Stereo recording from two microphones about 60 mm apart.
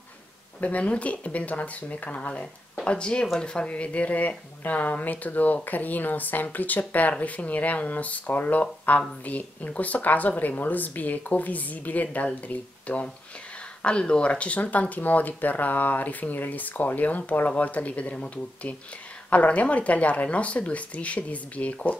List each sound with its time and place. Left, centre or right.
0.6 s a woman's voice: left